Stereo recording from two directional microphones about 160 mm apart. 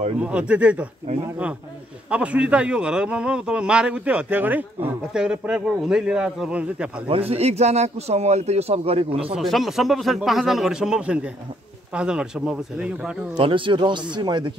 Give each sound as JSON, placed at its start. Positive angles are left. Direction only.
{"t": 0.2, "sound": "a man's voice", "side_deg": -5}
{"t": 2.0, "sound": "a man's voice", "side_deg": -10}
{"t": 7.1, "sound": "speech", "side_deg": -40}
{"t": 9.2, "sound": "a man's voice", "side_deg": 0}
{"t": 13.4, "sound": "speech", "side_deg": -30}